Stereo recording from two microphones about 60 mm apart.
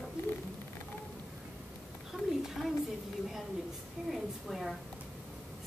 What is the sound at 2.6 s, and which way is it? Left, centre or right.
Speech, centre.